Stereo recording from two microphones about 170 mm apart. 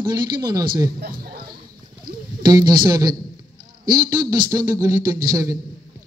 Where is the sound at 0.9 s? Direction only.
60° right (ahead or behind).